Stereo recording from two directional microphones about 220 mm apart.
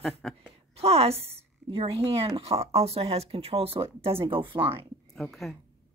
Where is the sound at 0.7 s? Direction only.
25° right (ahead or behind).